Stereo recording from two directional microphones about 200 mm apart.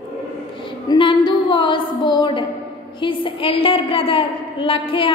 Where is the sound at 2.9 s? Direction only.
25° left (ahead or behind).